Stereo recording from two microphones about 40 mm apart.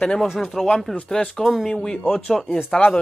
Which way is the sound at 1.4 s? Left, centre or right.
Centre.